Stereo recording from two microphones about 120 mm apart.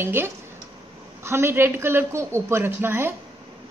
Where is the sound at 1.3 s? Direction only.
20° right (ahead or behind).